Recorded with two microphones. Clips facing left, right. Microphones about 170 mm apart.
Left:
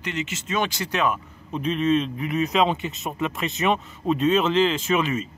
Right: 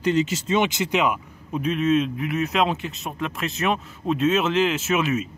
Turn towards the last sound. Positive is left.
turn(degrees=-5)  # may be behind; listen again after turning